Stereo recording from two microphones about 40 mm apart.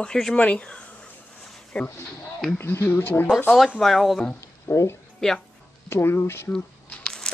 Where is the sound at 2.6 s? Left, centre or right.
Left.